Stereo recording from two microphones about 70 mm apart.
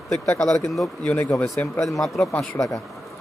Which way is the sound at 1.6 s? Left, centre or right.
Left.